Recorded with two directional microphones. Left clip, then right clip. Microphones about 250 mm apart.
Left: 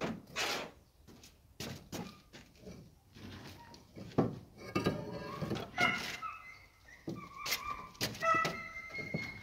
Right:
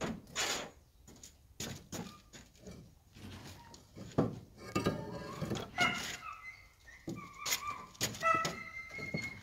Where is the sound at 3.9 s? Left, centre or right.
Centre.